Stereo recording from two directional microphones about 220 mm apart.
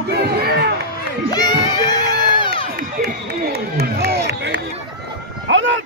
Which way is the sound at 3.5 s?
45° right (ahead or behind).